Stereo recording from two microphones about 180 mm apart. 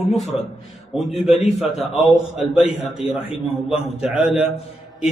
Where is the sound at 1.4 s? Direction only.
Centre (ahead or behind).